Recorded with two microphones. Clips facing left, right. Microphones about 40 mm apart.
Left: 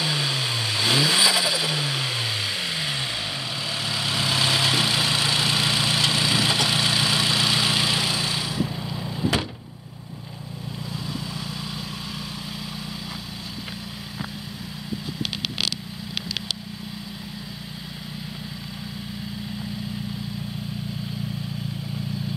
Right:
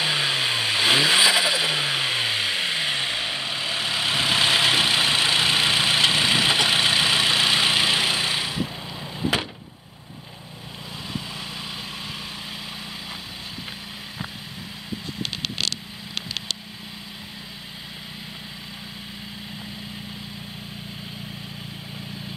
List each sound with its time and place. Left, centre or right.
0.0 s vehicle: right